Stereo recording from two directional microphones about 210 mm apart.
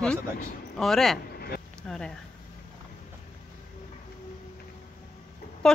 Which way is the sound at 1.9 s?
5° left (ahead or behind).